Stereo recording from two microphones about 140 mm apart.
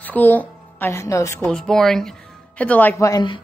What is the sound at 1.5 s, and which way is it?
A woman's voice, 5° left (ahead or behind).